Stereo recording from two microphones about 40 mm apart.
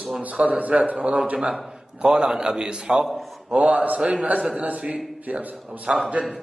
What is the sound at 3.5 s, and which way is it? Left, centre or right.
Speech, right.